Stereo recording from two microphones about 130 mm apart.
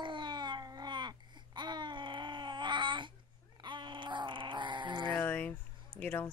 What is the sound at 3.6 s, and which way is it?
Groan, 35° right (ahead or behind).